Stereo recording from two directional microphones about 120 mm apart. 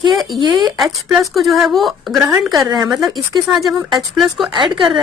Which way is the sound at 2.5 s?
35° right (ahead or behind).